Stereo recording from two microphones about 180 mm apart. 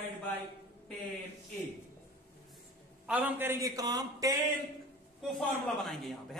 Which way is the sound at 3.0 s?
10° right (ahead or behind).